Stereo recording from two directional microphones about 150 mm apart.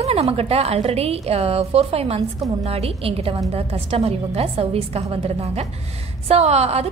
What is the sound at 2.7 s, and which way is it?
A woman's voice, 40° right (ahead or behind).